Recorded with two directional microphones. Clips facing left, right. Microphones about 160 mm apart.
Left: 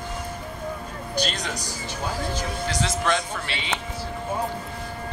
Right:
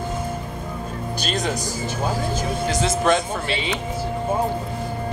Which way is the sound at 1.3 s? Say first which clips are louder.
Right 7 dB; 50° right (ahead or behind).